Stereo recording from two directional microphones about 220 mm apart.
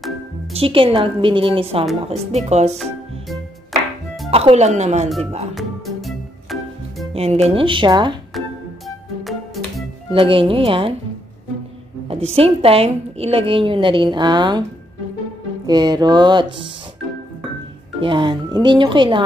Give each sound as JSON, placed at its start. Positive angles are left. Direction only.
{"t": 0.5, "sound": "a woman's voice", "side_deg": -25}
{"t": 4.3, "sound": "speech", "side_deg": -25}
{"t": 5.5, "sound": "music", "side_deg": 0}
{"t": 7.2, "sound": "a woman's voice", "side_deg": -30}
{"t": 8.4, "sound": "music", "side_deg": 0}
{"t": 10.1, "sound": "a woman's voice", "side_deg": -25}
{"t": 12.3, "sound": "a woman's voice", "side_deg": -25}
{"t": 15.6, "sound": "a woman's voice", "side_deg": -20}
{"t": 18.0, "sound": "a woman's voice", "side_deg": -20}